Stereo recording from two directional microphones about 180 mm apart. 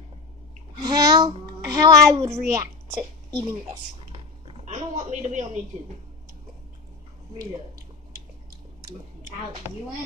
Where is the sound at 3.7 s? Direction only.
25° right (ahead or behind).